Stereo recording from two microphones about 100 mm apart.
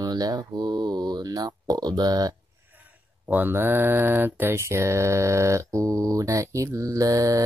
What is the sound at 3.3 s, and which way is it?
Speech, 20° right (ahead or behind).